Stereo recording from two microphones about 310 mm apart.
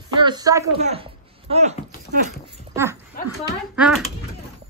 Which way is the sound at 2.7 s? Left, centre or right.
Centre.